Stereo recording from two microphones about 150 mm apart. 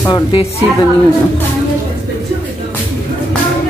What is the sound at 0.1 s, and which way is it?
Speech, 35° left (ahead or behind).